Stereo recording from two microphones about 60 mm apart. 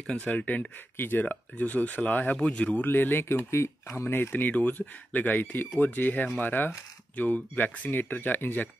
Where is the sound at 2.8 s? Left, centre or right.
Left.